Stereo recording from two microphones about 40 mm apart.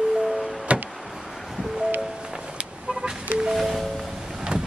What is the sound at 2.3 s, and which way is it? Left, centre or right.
Vehicle, right.